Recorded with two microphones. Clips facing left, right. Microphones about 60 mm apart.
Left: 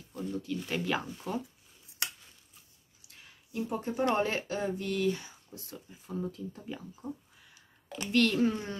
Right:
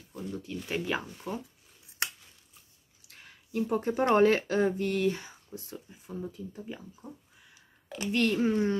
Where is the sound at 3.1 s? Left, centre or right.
Right.